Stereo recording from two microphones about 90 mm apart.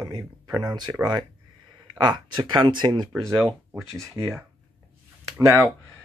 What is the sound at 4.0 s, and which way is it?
Speech, 30° right (ahead or behind).